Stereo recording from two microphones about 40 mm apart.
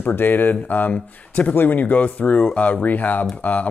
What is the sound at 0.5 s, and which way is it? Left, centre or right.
Speech, left.